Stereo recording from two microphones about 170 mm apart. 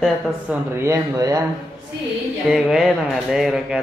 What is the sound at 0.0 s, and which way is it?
Speech, 10° right (ahead or behind).